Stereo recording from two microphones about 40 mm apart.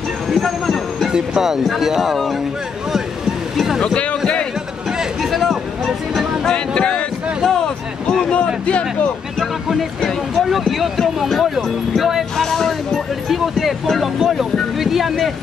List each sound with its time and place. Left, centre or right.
0.3 s vehicle: centre
1.0 s speech: centre
3.5 s speech: centre
3.8 s speech: left
5.2 s a sound: centre
6.5 s speech: left
7.6 s a sound: centre
9.4 s speech: centre
12.4 s a sound: centre
13.3 s speech: centre